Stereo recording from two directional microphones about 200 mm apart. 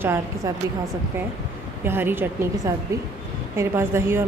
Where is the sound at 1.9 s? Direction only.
10° right (ahead or behind).